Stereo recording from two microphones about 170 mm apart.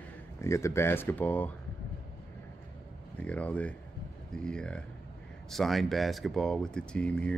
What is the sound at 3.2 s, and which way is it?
Speech, 10° left (ahead or behind).